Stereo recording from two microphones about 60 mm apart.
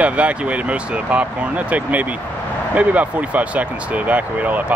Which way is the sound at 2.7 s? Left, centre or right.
Right.